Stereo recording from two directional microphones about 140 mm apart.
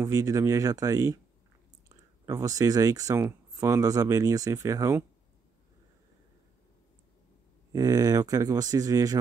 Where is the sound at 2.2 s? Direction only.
25° right (ahead or behind).